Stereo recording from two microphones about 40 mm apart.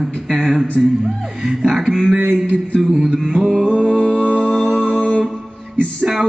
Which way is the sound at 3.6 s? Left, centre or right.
Right.